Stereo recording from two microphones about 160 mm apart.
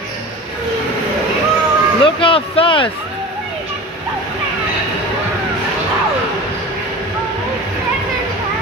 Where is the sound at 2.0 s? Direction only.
35° left (ahead or behind).